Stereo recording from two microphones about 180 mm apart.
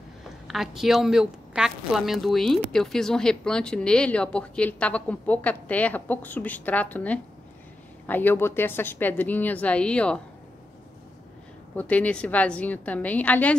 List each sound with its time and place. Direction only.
0.5 s a woman's voice: centre (ahead or behind)
11.7 s a woman's voice: 10° left (ahead or behind)